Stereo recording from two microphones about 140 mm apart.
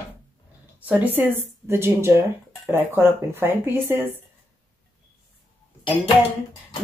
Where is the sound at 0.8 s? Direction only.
10° right (ahead or behind).